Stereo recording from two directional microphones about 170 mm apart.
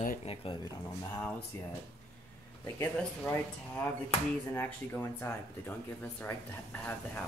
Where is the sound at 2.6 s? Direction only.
15° left (ahead or behind).